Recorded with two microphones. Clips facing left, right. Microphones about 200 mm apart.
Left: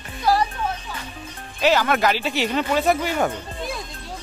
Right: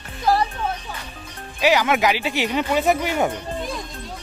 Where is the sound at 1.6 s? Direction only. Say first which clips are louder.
Right 1 dB; 15° right (ahead or behind).